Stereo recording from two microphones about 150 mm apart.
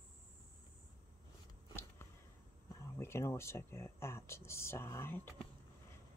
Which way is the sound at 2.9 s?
15° left (ahead or behind).